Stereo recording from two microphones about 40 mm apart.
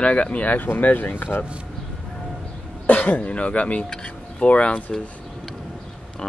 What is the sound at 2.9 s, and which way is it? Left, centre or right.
Speech, left.